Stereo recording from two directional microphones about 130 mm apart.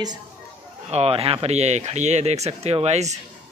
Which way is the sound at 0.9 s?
50° right (ahead or behind).